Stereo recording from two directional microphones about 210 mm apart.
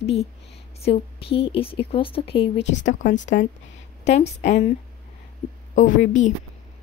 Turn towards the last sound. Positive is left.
turn(degrees=35)  # may be behind; listen again after turning